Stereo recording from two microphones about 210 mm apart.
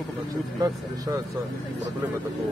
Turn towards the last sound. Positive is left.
turn(degrees=-15)  # may be behind; listen again after turning